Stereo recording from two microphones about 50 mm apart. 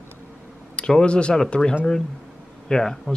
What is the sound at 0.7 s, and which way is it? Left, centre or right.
Speech, centre.